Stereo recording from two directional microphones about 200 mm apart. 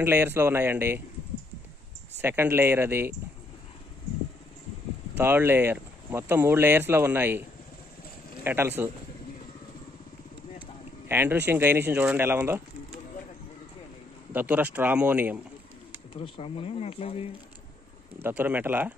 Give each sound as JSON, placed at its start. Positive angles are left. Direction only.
{"t": 0.0, "sound": "speech", "side_deg": -10}
{"t": 2.2, "sound": "speech", "side_deg": -10}
{"t": 5.1, "sound": "speech", "side_deg": -10}
{"t": 8.5, "sound": "speech", "side_deg": -10}
{"t": 11.1, "sound": "speech", "side_deg": -10}
{"t": 14.3, "sound": "speech", "side_deg": -10}
{"t": 16.1, "sound": "speech", "side_deg": 25}
{"t": 18.2, "sound": "speech", "side_deg": -10}